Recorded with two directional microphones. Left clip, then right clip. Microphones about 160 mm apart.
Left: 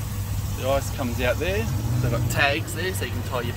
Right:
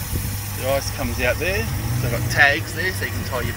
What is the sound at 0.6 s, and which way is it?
Speech, 10° left (ahead or behind).